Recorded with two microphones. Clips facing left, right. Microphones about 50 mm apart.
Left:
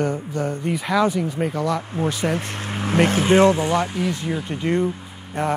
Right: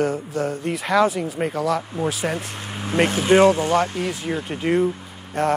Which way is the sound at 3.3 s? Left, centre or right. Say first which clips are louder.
Right 1 dB; right.